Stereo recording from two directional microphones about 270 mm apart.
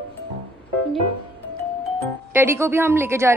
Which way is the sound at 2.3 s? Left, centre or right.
Centre.